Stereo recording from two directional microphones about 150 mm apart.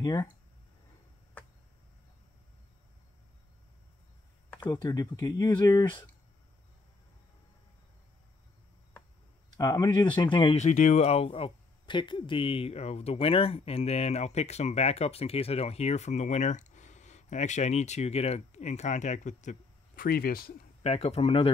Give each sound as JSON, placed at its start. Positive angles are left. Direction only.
{"t": 0.0, "sound": "speech", "side_deg": 25}
{"t": 4.6, "sound": "speech", "side_deg": 25}
{"t": 9.5, "sound": "speech", "side_deg": 25}
{"t": 10.5, "sound": "speech", "side_deg": 50}
{"t": 20.0, "sound": "speech", "side_deg": 85}
{"t": 20.8, "sound": "speech", "side_deg": 45}